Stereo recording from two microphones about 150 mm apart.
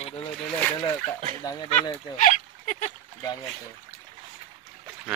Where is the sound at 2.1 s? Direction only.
55° left (ahead or behind).